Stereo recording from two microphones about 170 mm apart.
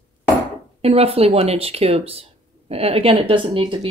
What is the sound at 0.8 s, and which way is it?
A woman's voice, 35° right (ahead or behind).